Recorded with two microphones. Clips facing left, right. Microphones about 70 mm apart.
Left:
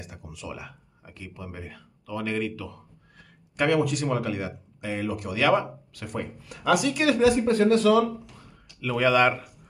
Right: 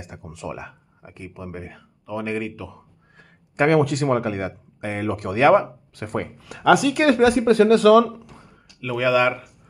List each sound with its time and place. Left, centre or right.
0.2 s speech: right
3.7 s speech: right
5.4 s speech: right
6.1 s speech: right
7.0 s speech: right
7.3 s speech: right
8.8 s speech: centre